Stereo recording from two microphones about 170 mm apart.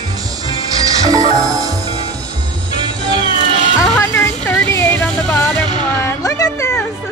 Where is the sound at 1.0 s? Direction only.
20° right (ahead or behind).